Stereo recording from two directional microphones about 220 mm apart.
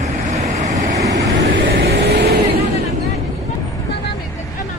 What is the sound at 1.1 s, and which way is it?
Vehicle, 50° right (ahead or behind).